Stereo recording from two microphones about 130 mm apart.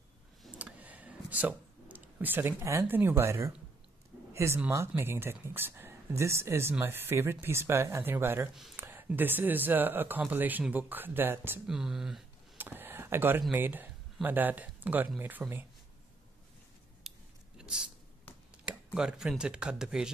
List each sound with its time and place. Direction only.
0.6 s a sound: 10° right (ahead or behind)
4.6 s speech: 20° right (ahead or behind)
11.6 s speech: 5° right (ahead or behind)
12.5 s computer keyboard: 15° right (ahead or behind)
14.2 s speech: 15° right (ahead or behind)
17.1 s scissors: centre (ahead or behind)
17.6 s a sound: 5° right (ahead or behind)
18.9 s speech: 5° right (ahead or behind)